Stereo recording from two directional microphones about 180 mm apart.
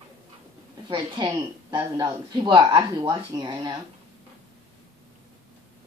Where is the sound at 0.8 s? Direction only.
25° right (ahead or behind).